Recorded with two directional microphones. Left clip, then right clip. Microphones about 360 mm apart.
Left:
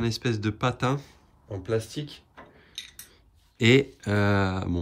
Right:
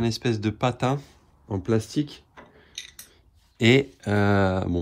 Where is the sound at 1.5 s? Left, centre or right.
Centre.